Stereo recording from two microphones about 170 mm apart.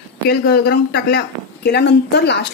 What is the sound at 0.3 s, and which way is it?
Speech, 65° left (ahead or behind).